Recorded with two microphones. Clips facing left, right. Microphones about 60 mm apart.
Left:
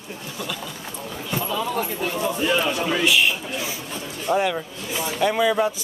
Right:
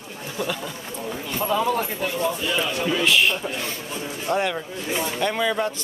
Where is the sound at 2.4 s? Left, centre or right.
Left.